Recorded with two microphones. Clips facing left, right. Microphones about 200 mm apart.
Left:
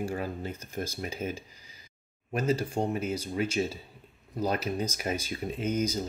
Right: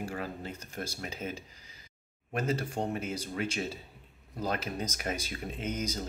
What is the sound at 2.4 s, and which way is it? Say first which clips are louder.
Speech: left 5 dB; 35° left (ahead or behind).